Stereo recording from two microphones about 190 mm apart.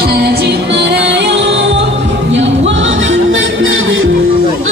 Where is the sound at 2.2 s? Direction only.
80° right.